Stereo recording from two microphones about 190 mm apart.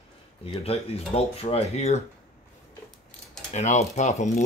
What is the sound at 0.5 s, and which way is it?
Speech, 30° left (ahead or behind).